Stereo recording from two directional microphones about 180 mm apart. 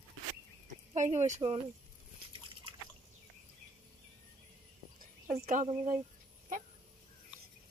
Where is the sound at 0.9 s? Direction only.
40° right (ahead or behind).